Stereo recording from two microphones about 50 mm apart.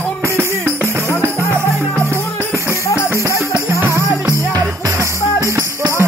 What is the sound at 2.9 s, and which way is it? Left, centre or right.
Music, left.